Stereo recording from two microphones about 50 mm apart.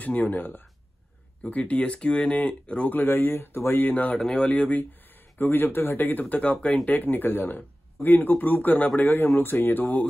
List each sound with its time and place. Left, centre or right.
0.0 s speech: left
1.4 s speech: left
2.9 s speech: left
3.9 s speech: left
4.2 s speech: centre
4.5 s speech: left